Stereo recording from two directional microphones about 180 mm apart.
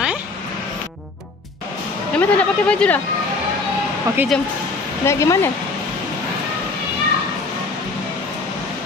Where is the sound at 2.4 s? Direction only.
5° left (ahead or behind).